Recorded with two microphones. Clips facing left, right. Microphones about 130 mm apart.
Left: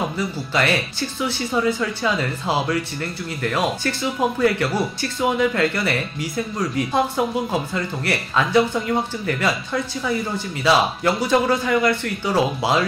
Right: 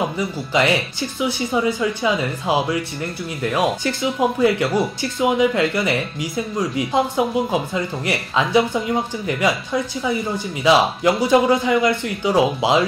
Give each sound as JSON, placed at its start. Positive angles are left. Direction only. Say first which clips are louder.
{"t": 0.5, "sound": "speech", "louder": "right 4 dB", "side_deg": -20}